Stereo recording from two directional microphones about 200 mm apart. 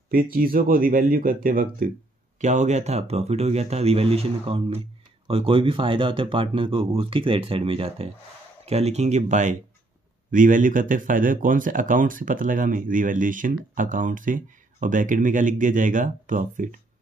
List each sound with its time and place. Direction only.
0.1 s speech: 45° right (ahead or behind)